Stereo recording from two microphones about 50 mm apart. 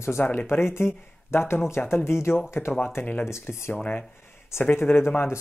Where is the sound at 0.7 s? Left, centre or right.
Left.